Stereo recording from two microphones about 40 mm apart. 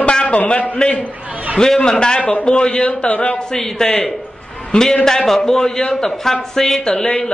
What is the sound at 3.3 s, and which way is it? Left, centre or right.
A man's voice, centre.